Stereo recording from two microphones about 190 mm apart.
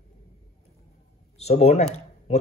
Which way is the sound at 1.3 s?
35° left (ahead or behind).